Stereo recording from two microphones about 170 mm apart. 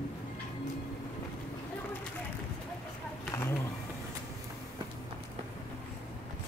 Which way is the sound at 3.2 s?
15° left (ahead or behind).